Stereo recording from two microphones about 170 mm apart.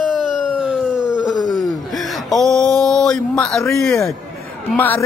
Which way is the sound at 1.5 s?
Centre (ahead or behind).